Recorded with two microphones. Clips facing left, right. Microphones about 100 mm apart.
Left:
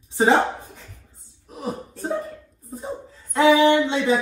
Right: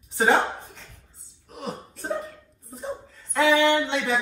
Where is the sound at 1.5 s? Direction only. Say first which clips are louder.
Left 4 dB; 15° left (ahead or behind).